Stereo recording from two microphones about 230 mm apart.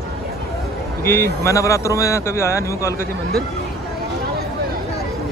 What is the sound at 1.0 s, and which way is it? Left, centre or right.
Speech, centre.